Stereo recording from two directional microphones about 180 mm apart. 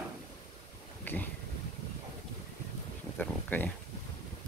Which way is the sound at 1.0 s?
10° left (ahead or behind).